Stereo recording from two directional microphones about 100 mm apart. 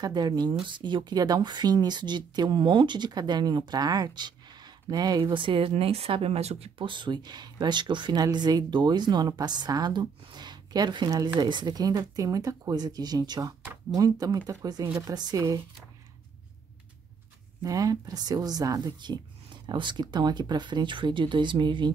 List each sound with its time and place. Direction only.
0.0 s speech: 40° right (ahead or behind)
5.3 s speech: 60° right (ahead or behind); by 6.9 s 85° right
6.9 s speech: 50° right (ahead or behind)
17.6 s speech: 35° right (ahead or behind)